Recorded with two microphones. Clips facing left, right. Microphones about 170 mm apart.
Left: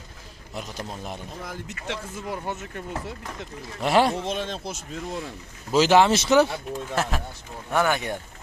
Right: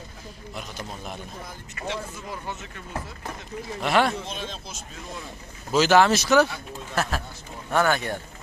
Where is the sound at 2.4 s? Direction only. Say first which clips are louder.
Left 4 dB; 50° left (ahead or behind).